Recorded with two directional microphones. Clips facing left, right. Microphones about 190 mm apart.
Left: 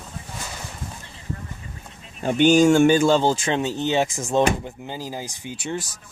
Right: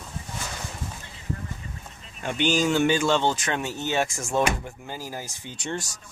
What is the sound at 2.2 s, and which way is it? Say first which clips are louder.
Speech: left 8 dB; 45° left (ahead or behind).